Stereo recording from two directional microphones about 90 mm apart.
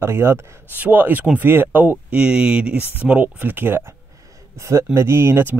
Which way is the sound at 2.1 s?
10° right (ahead or behind).